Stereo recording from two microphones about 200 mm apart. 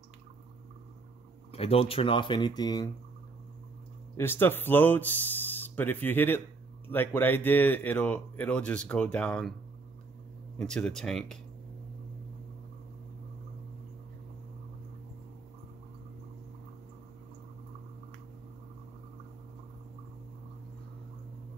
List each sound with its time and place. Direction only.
1.5 s speech: 30° left (ahead or behind)
4.2 s speech: 10° left (ahead or behind)
10.6 s speech: 5° left (ahead or behind)